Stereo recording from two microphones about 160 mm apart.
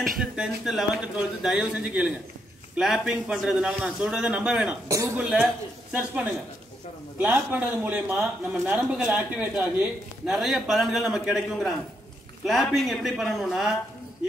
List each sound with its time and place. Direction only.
0.2 s speech: 5° right (ahead or behind)
4.8 s a woman's voice: 20° right (ahead or behind)
5.2 s speech: 5° right (ahead or behind)